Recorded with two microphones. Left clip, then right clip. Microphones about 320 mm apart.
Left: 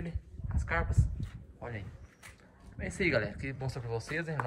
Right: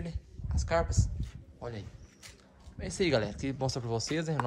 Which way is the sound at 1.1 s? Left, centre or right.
Centre.